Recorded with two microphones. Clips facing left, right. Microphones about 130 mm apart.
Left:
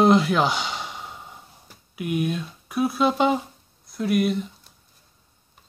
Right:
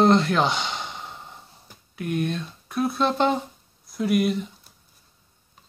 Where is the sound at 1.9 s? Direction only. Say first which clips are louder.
Left 1 dB; 10° left (ahead or behind).